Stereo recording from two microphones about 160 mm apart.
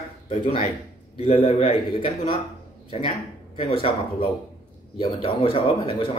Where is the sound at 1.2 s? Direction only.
40° left (ahead or behind).